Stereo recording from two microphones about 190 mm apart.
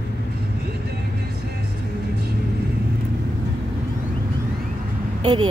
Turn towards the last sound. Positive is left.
turn(degrees=-25)  # may be behind; listen again after turning